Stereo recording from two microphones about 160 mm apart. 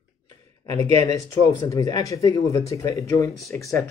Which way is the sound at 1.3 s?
20° left (ahead or behind).